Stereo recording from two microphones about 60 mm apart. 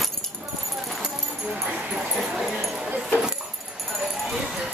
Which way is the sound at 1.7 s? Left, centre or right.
Centre.